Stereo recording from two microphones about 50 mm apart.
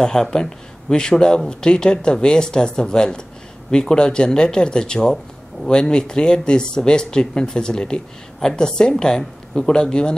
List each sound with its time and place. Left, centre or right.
0.0 s speech: centre